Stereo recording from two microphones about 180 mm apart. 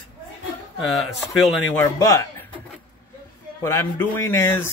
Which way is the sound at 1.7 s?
15° left (ahead or behind).